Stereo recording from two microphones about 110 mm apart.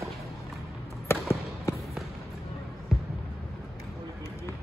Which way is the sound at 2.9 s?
5° right (ahead or behind).